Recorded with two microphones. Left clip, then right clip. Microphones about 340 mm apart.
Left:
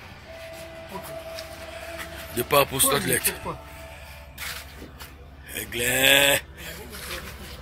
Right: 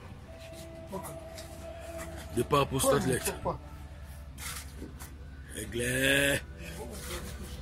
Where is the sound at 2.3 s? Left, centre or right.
Centre.